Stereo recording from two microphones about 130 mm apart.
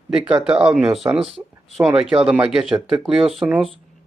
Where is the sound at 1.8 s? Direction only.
20° right (ahead or behind).